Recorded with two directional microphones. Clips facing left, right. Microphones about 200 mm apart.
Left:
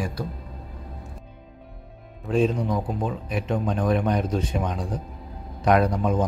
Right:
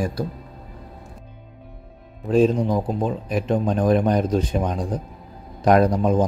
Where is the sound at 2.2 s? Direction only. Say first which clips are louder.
Right 5 dB; 35° right (ahead or behind).